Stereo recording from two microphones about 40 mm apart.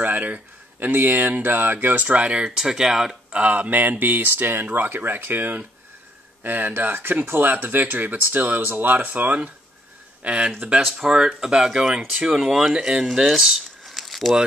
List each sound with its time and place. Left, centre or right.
0.0 s speech: right
2.1 s speech: right
2.4 s speech: centre
3.3 s speech: right
3.5 s speech: right
4.0 s speech: right
7.2 s speech: right
10.2 s speech: right
10.8 s speech: centre
11.1 s speech: centre
13.8 s a sound: centre